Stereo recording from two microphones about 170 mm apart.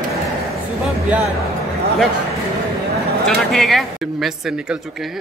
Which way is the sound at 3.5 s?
Centre (ahead or behind).